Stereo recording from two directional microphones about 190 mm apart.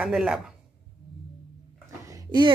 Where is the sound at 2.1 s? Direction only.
25° right (ahead or behind).